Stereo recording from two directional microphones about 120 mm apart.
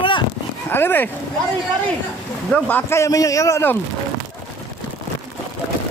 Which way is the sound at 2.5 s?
15° left (ahead or behind).